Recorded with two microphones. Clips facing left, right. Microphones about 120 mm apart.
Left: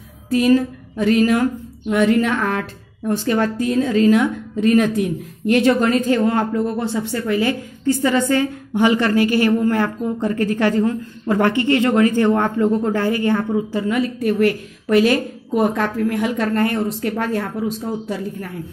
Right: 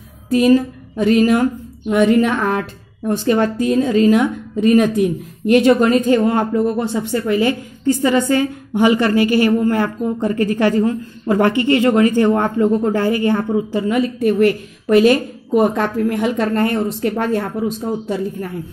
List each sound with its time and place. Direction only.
0.3 s a woman's voice: 20° right (ahead or behind)